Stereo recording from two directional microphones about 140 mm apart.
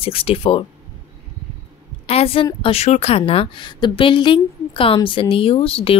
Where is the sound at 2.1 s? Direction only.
45° left (ahead or behind).